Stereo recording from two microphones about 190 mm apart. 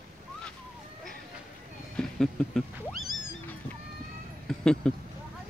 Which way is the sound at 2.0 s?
Centre (ahead or behind).